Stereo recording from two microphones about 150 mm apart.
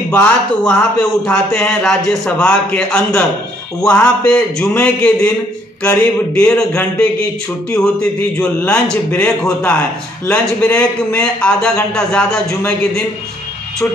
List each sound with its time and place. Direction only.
0.1 s speech: 5° left (ahead or behind)